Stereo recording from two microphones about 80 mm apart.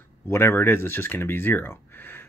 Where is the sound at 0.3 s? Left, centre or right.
Left.